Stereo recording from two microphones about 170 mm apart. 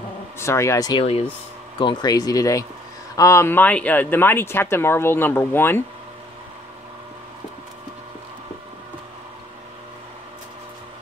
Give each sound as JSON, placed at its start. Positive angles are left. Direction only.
{"t": 0.4, "sound": "speech", "side_deg": 15}